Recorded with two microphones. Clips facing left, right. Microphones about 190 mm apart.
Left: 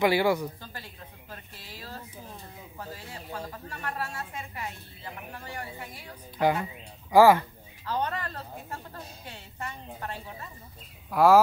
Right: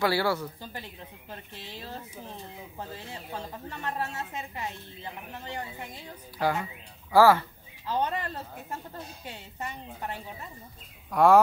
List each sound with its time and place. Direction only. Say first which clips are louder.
0.0 s speech: left 3 dB; 15° left (ahead or behind)
1.3 s a woman's voice: right 4 dB; 25° right (ahead or behind)
6.3 s speech: left 3 dB; 20° left (ahead or behind)
7.8 s a woman's voice: right 1 dB; 15° right (ahead or behind)
11.1 s speech: even; 5° left (ahead or behind)